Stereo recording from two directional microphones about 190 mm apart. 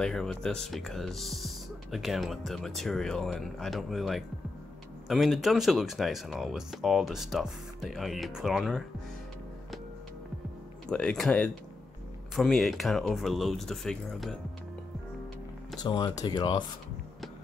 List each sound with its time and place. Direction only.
0.0 s speech: 5° left (ahead or behind)
10.9 s speech: 5° left (ahead or behind)
15.8 s speech: 20° left (ahead or behind)